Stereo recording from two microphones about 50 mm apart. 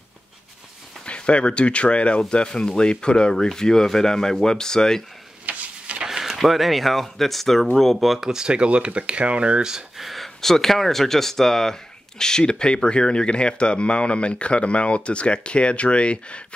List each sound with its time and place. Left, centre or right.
1.0 s speech: left
5.5 s tick-tock: right
6.0 s speech: centre
8.3 s speech: centre
10.0 s speech: centre; by 16.4 s left